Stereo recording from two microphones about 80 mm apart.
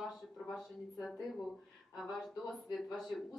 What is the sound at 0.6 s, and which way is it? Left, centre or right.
Speech, centre.